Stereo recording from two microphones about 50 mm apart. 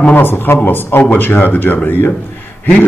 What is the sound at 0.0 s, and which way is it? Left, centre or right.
A man's voice, left.